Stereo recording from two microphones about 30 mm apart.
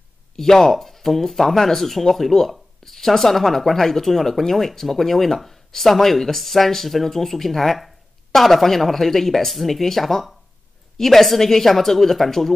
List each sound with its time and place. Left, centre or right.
0.4 s speech: centre